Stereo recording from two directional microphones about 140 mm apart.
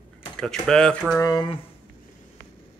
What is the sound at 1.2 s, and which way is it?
Speech, 25° left (ahead or behind).